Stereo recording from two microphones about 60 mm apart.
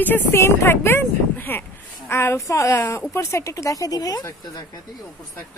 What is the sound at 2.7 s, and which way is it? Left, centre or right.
Speech, left.